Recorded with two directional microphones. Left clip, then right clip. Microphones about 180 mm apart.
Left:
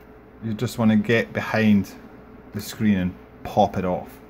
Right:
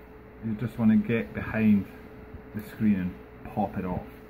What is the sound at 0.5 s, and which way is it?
Speech, 60° left (ahead or behind).